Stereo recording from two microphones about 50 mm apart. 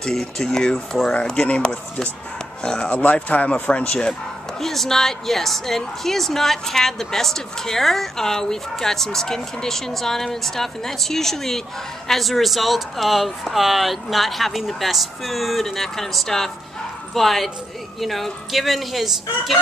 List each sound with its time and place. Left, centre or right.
0.0 s a woman's voice: centre
2.9 s speech: left
4.1 s a woman's voice: centre